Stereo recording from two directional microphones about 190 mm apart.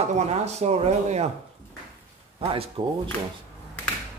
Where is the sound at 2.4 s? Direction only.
30° right (ahead or behind).